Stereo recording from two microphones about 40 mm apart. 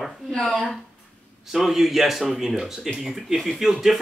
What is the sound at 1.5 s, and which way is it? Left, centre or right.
A man's voice, centre.